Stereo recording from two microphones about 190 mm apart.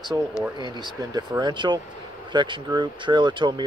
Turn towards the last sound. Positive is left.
turn(degrees=-25)  # may be behind; listen again after turning